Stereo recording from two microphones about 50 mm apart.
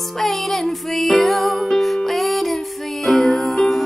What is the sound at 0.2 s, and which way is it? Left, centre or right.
Music, centre.